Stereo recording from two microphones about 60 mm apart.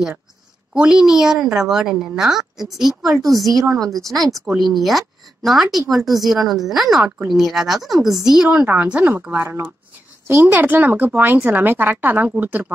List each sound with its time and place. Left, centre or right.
0.7 s a woman's voice: centre
3.2 s speech: right
4.1 s speech: centre
9.0 s speech: right
9.3 s speech: right